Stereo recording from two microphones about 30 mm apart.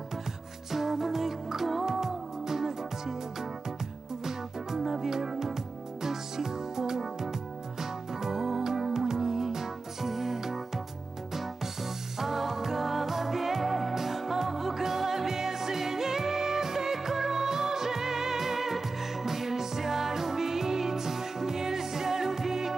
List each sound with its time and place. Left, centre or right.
0.7 s music: centre